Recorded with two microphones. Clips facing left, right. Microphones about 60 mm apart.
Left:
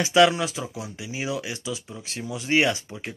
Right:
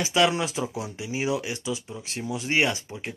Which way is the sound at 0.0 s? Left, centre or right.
Centre.